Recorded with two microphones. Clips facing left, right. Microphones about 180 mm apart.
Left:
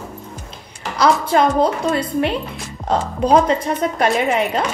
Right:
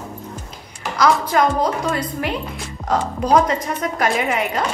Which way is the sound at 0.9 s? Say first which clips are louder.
Left 1 dB; 30° left (ahead or behind).